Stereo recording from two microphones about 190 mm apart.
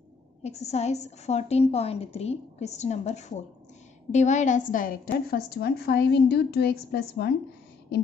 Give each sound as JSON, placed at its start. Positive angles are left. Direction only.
{"t": 0.4, "sound": "a woman's voice", "side_deg": 35}